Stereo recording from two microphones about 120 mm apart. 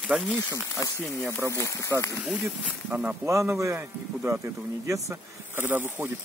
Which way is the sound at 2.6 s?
15° right (ahead or behind).